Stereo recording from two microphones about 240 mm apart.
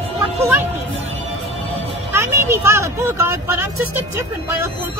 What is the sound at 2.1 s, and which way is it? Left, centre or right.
Speech, centre.